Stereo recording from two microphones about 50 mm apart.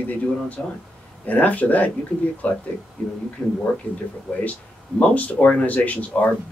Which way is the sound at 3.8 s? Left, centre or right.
Left.